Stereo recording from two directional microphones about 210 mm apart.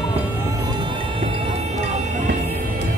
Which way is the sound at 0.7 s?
20° right (ahead or behind).